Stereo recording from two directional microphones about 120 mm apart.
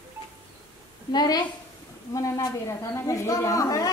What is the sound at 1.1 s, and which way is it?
A woman's voice, 35° left (ahead or behind).